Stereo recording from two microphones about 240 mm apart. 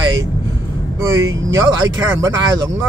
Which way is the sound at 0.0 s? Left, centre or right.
Centre.